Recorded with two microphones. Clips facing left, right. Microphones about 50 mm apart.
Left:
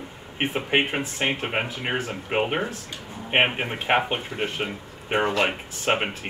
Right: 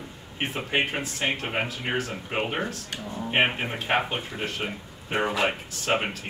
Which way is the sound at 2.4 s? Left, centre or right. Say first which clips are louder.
Left 1 dB; centre.